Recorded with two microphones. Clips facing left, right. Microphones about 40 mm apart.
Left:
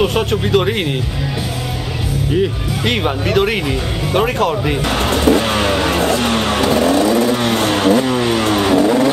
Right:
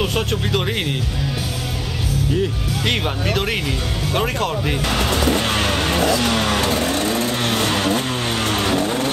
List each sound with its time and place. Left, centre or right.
0.0 s speech: centre
2.8 s speech: centre
4.8 s music: left
5.3 s speech: centre
5.9 s vehicle: left